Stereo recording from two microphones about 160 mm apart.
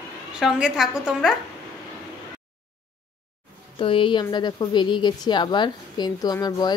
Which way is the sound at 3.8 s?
35° left (ahead or behind).